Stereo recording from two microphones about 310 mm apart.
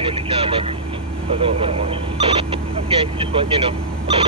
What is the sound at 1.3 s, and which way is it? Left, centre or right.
Speech, centre.